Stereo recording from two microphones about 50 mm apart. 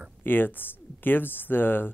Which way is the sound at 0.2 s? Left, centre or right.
Left.